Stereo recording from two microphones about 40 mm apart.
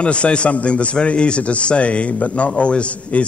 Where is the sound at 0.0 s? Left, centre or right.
Left.